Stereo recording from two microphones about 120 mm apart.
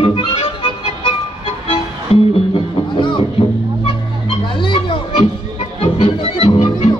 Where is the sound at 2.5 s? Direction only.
45° left (ahead or behind).